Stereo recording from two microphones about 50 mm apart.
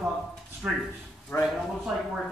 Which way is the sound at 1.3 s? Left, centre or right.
Left.